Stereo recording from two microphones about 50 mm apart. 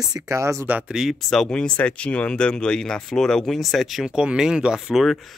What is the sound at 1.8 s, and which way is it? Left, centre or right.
Speech, left.